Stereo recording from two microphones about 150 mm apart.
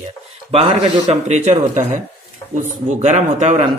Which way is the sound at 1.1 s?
50° right (ahead or behind).